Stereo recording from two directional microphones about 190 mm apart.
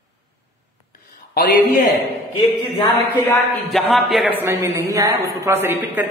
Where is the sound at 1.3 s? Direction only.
50° left (ahead or behind).